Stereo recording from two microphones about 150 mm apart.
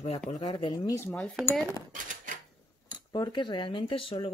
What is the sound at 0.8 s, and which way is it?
Speech, 15° left (ahead or behind).